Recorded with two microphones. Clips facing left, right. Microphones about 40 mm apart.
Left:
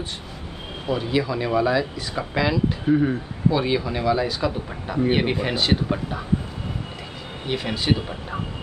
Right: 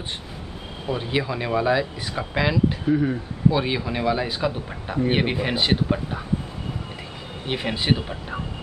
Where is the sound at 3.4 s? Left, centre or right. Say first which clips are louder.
Even; centre.